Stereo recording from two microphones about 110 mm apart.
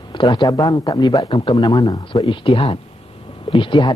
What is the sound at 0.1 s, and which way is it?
Speech, 40° left (ahead or behind).